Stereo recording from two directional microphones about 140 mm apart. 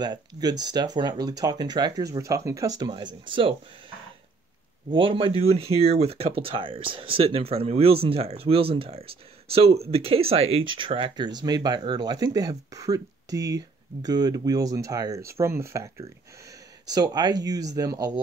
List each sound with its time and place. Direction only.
0.0 s speech: 30° right (ahead or behind)
4.9 s speech: 35° right (ahead or behind)